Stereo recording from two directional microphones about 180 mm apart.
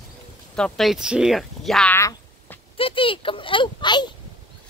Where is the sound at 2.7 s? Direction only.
30° left (ahead or behind).